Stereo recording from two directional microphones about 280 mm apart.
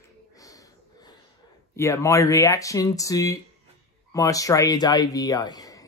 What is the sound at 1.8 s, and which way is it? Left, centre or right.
Speech, centre.